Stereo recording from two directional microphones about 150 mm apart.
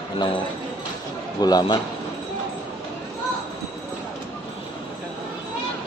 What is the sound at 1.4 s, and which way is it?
Speech, 30° left (ahead or behind).